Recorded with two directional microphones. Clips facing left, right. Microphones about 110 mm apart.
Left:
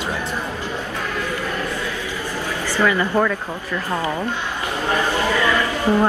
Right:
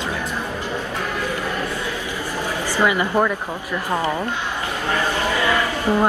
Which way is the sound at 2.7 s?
15° right (ahead or behind).